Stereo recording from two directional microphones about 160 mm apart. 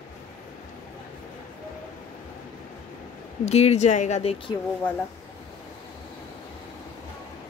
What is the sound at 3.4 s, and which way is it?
Speech, 45° left (ahead or behind).